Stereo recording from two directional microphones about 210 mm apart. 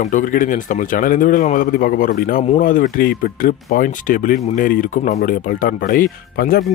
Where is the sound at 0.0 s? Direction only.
40° left (ahead or behind).